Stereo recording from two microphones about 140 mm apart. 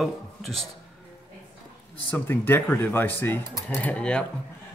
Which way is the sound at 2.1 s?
15° left (ahead or behind).